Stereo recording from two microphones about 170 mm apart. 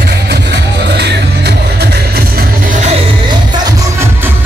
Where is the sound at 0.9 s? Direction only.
75° right (ahead or behind).